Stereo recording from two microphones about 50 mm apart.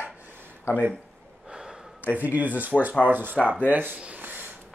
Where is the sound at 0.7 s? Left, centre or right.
Left.